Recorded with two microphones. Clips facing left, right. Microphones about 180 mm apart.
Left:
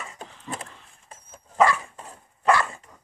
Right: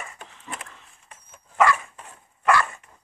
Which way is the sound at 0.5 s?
30° left (ahead or behind).